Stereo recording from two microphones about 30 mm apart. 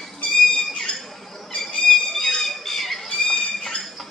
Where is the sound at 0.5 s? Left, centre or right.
Left.